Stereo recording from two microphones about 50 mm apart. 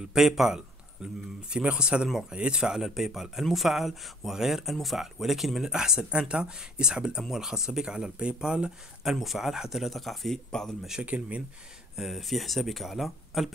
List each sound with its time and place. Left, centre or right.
0.0 s speech: centre
1.5 s speech: centre
9.1 s speech: centre
11.0 s speech: right
12.0 s speech: centre